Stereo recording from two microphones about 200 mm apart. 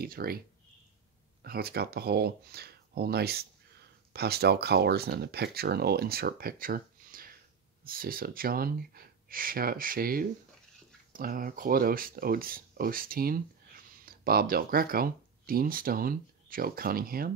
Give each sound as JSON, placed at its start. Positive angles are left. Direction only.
{"t": 0.0, "sound": "speech", "side_deg": -50}
{"t": 1.4, "sound": "speech", "side_deg": -50}